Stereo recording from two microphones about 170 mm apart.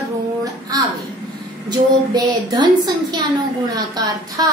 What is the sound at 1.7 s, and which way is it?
A woman's voice, 25° right (ahead or behind).